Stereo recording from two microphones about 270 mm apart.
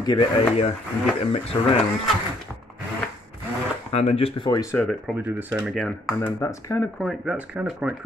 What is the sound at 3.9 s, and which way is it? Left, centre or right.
Speech, left.